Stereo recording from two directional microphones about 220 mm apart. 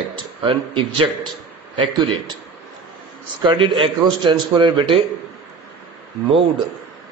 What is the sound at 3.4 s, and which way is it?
A man's voice, 25° right (ahead or behind).